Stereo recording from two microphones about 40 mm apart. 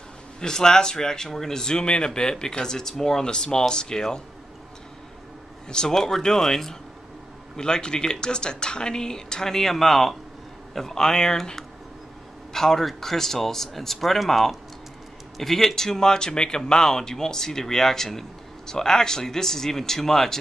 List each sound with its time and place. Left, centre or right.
0.4 s speech: centre
3.3 s speech: left
5.7 s speech: centre
7.5 s speech: centre